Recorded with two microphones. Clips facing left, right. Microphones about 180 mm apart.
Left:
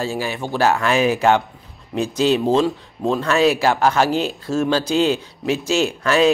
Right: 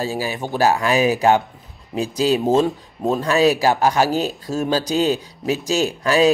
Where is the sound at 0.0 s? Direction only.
40° right (ahead or behind).